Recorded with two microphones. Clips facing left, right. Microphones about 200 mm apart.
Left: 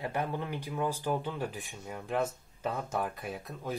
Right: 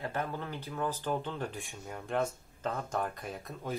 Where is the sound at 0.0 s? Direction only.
15° left (ahead or behind).